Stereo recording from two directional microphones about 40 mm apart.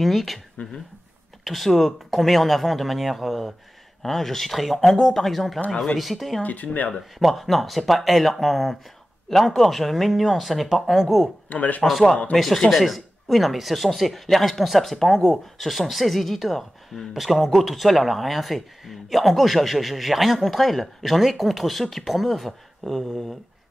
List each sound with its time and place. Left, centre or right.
0.0 s speech: centre
1.4 s speech: centre
6.4 s speech: left
7.0 s speech: centre
11.4 s speech: left
12.5 s speech: centre
12.8 s speech: centre